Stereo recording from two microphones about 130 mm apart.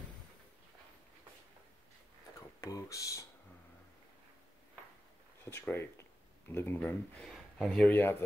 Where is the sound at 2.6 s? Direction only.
25° left (ahead or behind).